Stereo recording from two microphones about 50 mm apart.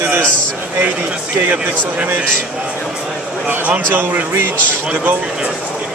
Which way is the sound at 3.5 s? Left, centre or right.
Right.